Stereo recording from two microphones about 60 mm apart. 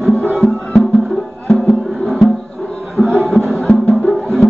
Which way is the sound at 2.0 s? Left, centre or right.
Centre.